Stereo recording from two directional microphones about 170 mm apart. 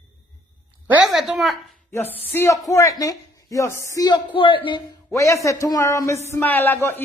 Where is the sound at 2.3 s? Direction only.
15° left (ahead or behind).